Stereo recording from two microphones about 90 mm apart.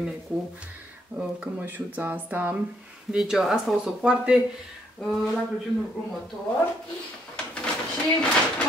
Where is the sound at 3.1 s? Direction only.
5° right (ahead or behind).